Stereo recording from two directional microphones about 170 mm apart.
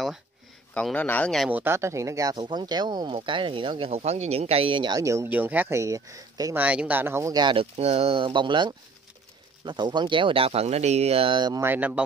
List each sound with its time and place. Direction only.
0.7 s a man's voice: 10° left (ahead or behind)
1.5 s speech: 15° right (ahead or behind)
6.6 s speech: 10° right (ahead or behind); by 11.6 s 25° right (ahead or behind)
11.6 s speech: 10° right (ahead or behind)